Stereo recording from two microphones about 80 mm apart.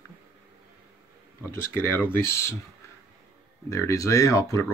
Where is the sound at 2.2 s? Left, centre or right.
Left.